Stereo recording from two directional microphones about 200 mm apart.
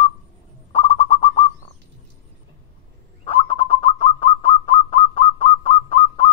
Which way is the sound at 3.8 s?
30° left (ahead or behind).